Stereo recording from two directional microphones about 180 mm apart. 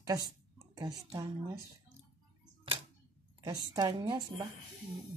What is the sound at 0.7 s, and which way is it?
Speech, 20° right (ahead or behind).